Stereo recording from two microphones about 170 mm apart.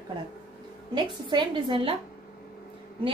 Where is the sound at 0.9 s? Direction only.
30° right (ahead or behind).